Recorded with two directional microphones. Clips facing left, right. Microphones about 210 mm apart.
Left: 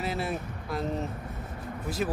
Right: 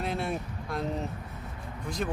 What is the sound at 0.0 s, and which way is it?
Speech, centre (ahead or behind).